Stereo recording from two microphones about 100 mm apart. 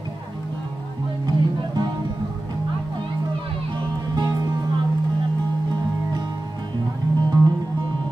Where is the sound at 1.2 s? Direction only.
40° right (ahead or behind).